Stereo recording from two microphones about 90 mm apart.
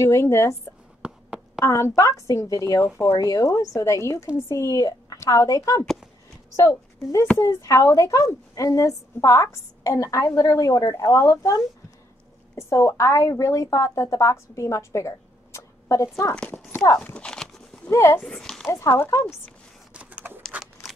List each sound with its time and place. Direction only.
0.0 s speech: 30° left (ahead or behind)
1.0 s a sound: 10° right (ahead or behind)
1.6 s speech: 35° left (ahead or behind)
5.9 s a sound: centre (ahead or behind)
6.5 s a woman's voice: 35° left (ahead or behind)
11.1 s a woman's voice: 35° left (ahead or behind)
16.3 s speech: 20° left (ahead or behind)
17.8 s speech: 30° left (ahead or behind)
18.2 s speech: 5° left (ahead or behind)
18.7 s speech: 30° left (ahead or behind)
19.9 s a sound: 15° right (ahead or behind)